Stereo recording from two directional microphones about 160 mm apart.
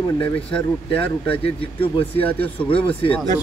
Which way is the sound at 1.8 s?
10° left (ahead or behind).